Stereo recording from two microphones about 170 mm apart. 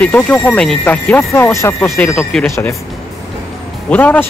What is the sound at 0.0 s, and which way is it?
Speech, 10° left (ahead or behind).